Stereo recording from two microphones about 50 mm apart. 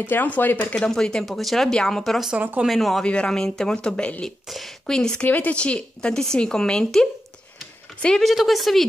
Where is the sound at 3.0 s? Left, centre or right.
Left.